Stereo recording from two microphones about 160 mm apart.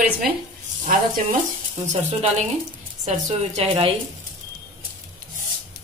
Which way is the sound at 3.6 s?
35° right (ahead or behind).